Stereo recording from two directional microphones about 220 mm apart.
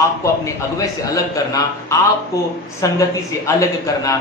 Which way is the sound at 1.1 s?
15° left (ahead or behind).